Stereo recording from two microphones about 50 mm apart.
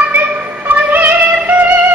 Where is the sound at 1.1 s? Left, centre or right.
Right.